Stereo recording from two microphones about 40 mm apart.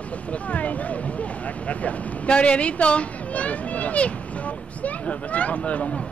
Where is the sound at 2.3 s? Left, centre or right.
Left.